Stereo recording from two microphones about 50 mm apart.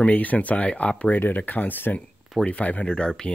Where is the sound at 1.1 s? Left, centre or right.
Left.